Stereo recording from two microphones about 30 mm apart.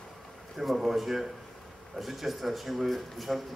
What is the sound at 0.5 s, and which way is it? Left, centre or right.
A man's voice, centre.